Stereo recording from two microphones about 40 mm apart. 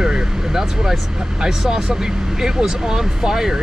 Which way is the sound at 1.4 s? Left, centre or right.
Centre.